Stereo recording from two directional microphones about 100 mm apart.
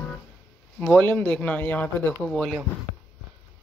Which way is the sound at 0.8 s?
15° left (ahead or behind).